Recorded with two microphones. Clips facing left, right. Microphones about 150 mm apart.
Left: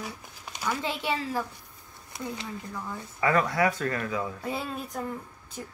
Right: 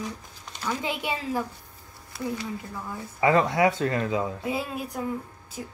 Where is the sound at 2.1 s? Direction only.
20° left (ahead or behind).